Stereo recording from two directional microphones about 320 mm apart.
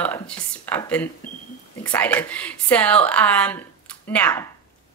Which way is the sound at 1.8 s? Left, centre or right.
Centre.